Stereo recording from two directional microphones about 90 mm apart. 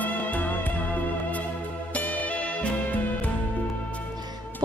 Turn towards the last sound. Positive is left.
turn(degrees=15)  # may be behind; listen again after turning